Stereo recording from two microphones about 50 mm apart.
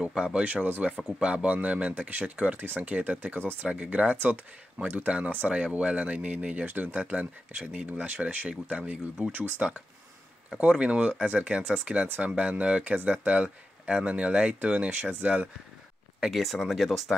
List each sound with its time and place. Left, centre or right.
0.0 s speech: centre
0.4 s speech: right
1.2 s speech: right
16.3 s speech: centre